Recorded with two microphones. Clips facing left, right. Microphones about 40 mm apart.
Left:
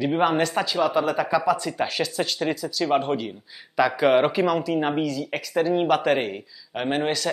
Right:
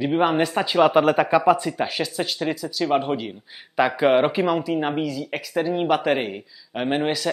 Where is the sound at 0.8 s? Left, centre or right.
Right.